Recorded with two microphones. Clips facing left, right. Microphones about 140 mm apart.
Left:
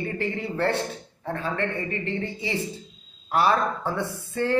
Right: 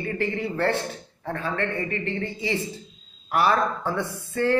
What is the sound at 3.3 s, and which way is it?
A man's voice, 20° left (ahead or behind).